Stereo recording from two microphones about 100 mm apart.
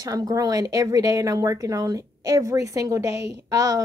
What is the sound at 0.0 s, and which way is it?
Speech, 40° right (ahead or behind).